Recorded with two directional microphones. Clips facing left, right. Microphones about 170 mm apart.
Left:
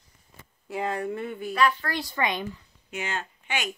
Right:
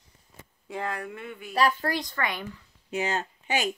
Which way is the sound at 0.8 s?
25° left (ahead or behind).